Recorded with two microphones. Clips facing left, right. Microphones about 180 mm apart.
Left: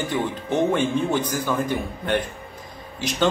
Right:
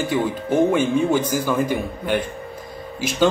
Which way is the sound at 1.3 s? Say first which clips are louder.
Right 3 dB; 10° right (ahead or behind).